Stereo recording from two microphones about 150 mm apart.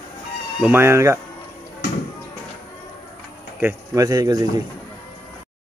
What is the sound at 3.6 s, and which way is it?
Speech, 20° right (ahead or behind).